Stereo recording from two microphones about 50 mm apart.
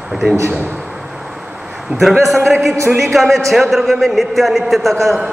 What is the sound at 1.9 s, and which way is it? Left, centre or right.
Speech, right.